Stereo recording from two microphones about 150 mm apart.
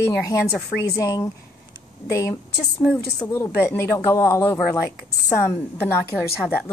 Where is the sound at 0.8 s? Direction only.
20° left (ahead or behind).